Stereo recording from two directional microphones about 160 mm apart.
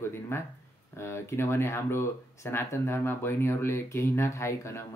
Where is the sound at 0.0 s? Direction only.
15° left (ahead or behind).